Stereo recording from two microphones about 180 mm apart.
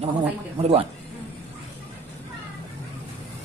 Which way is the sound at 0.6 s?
30° right (ahead or behind).